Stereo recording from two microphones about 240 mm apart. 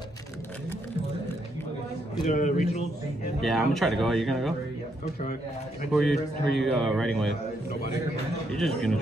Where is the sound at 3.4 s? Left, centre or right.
Centre.